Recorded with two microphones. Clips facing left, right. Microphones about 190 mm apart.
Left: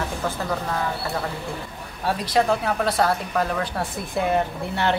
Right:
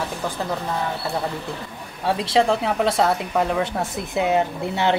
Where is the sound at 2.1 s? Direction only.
25° right (ahead or behind).